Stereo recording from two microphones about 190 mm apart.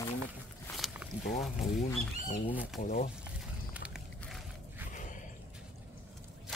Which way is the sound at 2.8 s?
45° left (ahead or behind).